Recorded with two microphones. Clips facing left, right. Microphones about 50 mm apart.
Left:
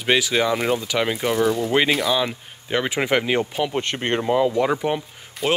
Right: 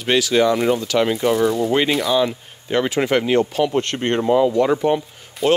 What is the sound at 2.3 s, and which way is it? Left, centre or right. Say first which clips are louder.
A man's voice: right 3 dB; centre.